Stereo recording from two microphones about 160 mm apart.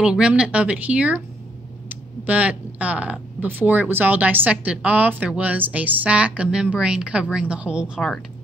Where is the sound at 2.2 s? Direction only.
10° right (ahead or behind).